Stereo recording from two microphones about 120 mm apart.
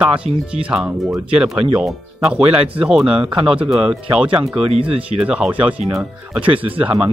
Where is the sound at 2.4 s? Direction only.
50° right (ahead or behind).